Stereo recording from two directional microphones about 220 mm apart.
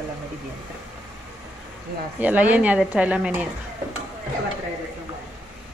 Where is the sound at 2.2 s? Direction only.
5° right (ahead or behind).